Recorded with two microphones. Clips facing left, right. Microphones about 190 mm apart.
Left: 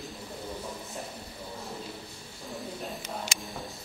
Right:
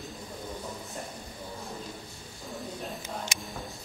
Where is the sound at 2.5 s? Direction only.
Centre (ahead or behind).